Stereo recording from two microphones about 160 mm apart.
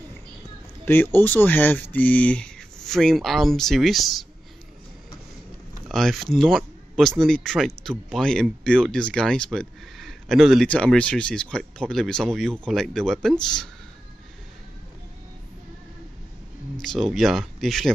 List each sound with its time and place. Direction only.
0.8 s speech: 10° left (ahead or behind)
5.9 s speech: centre (ahead or behind)
16.8 s speech: centre (ahead or behind)